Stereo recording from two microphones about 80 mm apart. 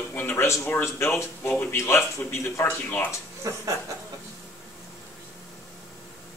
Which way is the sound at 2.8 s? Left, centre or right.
Centre.